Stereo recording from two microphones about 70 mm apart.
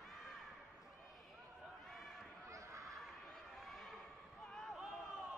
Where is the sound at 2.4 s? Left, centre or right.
Right.